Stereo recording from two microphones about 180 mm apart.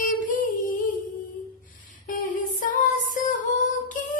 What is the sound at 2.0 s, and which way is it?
Music, 50° left (ahead or behind).